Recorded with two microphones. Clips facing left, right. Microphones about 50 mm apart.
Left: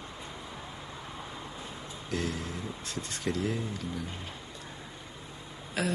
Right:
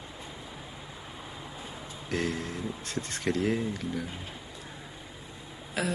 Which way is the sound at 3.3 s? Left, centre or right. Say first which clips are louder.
Right 3 dB; right.